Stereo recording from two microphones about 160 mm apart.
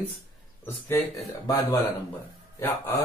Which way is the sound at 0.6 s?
15° left (ahead or behind).